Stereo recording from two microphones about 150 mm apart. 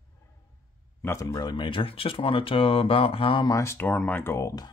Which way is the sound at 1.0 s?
20° left (ahead or behind).